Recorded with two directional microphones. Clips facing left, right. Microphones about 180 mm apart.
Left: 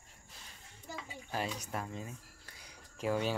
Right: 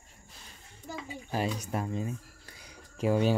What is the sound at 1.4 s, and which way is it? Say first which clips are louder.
Speech: right 6 dB; 20° right (ahead or behind).